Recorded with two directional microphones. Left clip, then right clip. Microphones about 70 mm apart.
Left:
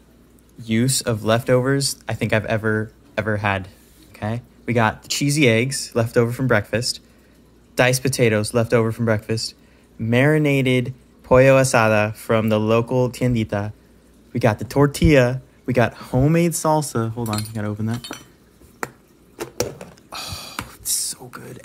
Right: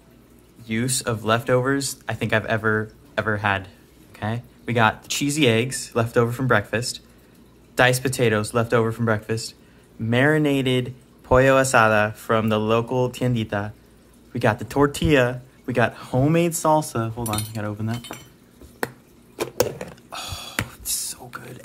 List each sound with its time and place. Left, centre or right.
0.8 s speech: left
3.4 s speech: left
4.1 s speech: centre; by 16.1 s left
16.3 s speech: left
17.2 s speech: centre
17.6 s speech: left
20.1 s a sound: left
20.7 s whispering: left